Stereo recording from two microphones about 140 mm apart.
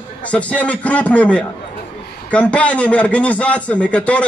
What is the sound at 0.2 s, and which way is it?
Speech, 10° left (ahead or behind).